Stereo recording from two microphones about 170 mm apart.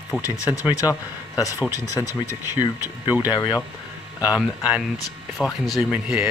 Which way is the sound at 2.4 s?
15° right (ahead or behind).